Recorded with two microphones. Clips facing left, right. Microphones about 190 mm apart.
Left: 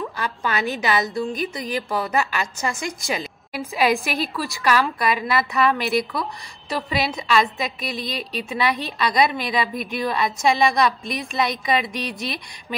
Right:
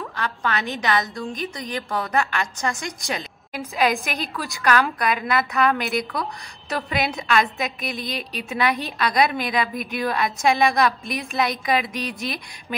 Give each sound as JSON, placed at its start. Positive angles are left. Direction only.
{"t": 0.0, "sound": "a woman's voice", "side_deg": 5}